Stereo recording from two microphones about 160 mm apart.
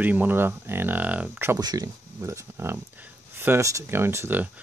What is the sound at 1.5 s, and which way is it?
Speech, 25° right (ahead or behind).